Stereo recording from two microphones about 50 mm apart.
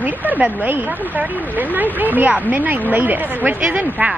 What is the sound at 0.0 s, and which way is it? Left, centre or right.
A woman's voice, right.